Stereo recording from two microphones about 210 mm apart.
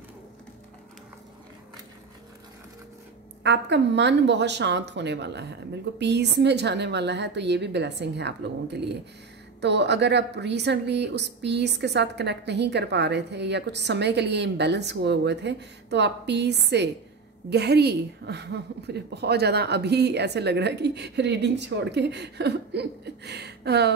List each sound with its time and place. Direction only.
3.4 s a woman's voice: 55° right (ahead or behind)